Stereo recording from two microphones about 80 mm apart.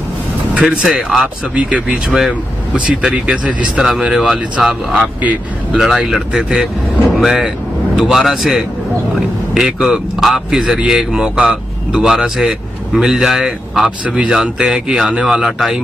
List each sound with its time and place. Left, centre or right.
0.6 s a man's voice: centre
5.8 s a man's voice: centre